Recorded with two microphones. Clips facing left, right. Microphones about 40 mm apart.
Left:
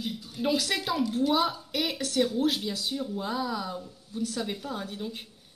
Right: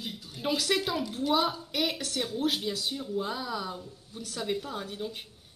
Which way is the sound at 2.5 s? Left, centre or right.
Right.